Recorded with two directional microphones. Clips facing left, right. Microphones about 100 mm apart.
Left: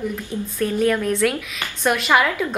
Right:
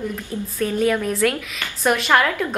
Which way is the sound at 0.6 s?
5° right (ahead or behind).